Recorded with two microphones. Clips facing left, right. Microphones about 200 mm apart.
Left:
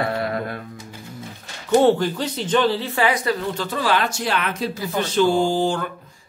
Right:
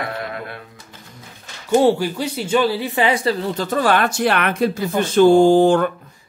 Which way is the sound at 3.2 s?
40° right (ahead or behind).